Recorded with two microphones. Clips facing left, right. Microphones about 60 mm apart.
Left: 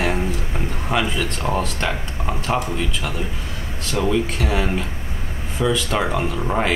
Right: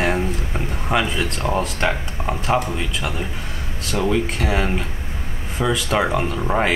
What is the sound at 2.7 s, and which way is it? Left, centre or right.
Speech, centre.